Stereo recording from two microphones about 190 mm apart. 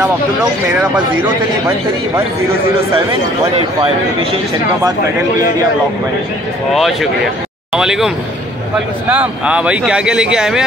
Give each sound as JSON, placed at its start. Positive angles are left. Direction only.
{"t": 3.8, "sound": "a man's voice", "side_deg": -30}
{"t": 6.7, "sound": "speech", "side_deg": 0}
{"t": 9.1, "sound": "speech", "side_deg": -10}